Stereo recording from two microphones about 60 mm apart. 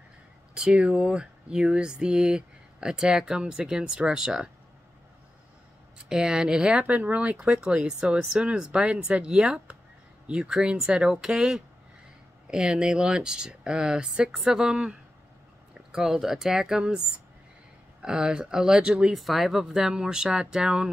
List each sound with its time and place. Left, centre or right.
0.6 s speech: centre
5.9 s speech: centre
6.9 s speech: right
19.1 s speech: centre